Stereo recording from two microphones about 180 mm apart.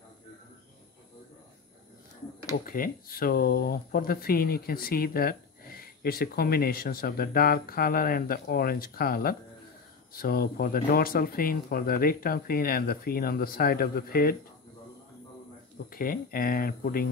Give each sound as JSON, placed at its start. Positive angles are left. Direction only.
{"t": 2.7, "sound": "speech", "side_deg": 55}
{"t": 15.9, "sound": "speech", "side_deg": 55}